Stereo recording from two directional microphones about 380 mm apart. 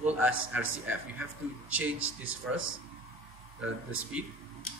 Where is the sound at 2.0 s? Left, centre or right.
Right.